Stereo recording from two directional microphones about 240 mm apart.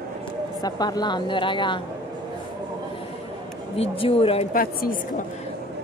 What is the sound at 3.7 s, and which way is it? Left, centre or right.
Speech, left.